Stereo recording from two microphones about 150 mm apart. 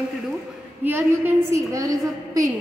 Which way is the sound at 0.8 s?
15° right (ahead or behind).